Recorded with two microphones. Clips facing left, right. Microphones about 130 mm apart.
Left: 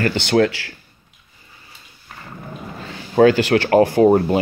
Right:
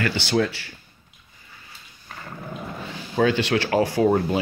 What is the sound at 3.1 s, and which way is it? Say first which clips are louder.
Speech: left 7 dB; 50° left (ahead or behind).